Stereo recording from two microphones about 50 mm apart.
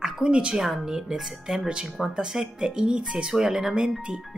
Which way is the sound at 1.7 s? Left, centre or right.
Centre.